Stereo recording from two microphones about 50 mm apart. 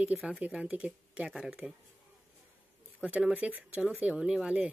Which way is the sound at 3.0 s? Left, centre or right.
Right.